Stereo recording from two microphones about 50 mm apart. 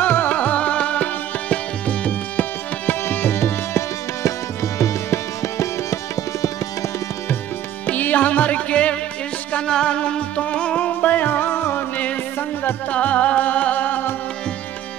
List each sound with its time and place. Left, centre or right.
0.0 s music: left
0.4 s music: left
1.5 s tabla: left
2.9 s tabla: left
4.7 s music: left
7.8 s music: left
12.9 s music: left